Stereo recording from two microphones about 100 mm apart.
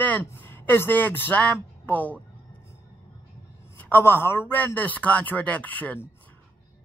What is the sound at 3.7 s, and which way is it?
A woman's voice, 20° left (ahead or behind).